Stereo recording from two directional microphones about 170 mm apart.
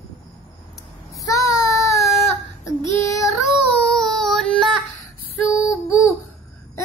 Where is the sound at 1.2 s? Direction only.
20° left (ahead or behind).